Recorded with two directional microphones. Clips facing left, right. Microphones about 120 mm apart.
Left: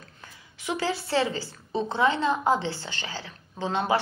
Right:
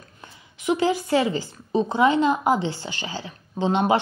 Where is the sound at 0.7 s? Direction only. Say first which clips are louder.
Right 7 dB; 20° right (ahead or behind).